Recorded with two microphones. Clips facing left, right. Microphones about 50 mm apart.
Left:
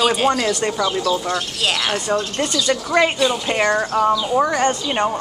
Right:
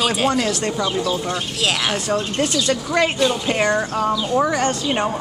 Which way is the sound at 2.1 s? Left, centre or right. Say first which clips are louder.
Right 1 dB; centre.